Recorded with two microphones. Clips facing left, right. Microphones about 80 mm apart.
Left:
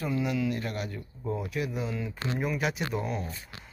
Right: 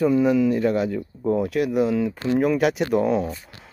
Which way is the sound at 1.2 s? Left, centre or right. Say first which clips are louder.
Right 10 dB; right.